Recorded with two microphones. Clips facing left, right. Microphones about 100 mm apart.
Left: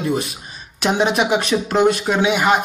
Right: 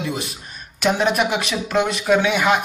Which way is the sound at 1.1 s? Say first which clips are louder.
Left 3 dB; 25° left (ahead or behind).